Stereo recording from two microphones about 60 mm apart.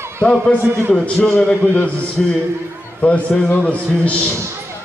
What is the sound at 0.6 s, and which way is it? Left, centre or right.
Music, right.